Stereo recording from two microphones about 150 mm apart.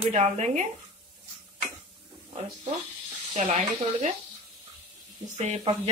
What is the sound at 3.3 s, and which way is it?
Speech, 50° right (ahead or behind).